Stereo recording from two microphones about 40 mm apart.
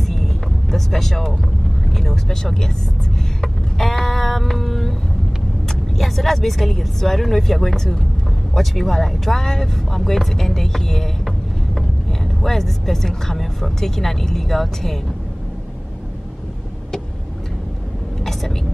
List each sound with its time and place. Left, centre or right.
0.0 s vehicle: centre
1.9 s speech: centre
3.3 s a sound: centre
5.7 s speech: centre